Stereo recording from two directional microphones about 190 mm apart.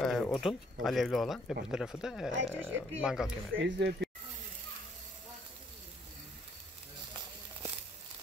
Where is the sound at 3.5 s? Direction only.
75° right (ahead or behind).